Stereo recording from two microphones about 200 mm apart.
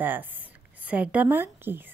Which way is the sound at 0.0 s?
10° right (ahead or behind).